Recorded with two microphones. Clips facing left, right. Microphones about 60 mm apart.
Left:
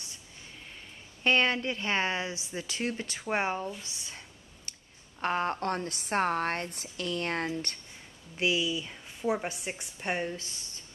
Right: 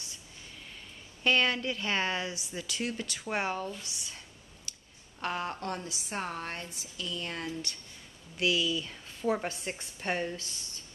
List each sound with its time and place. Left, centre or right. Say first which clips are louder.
1.2 s speech: left 1 dB; left
3.8 s a sound: even; left
5.2 s a woman's voice: left 5 dB; left
8.4 s a woman's voice: even; left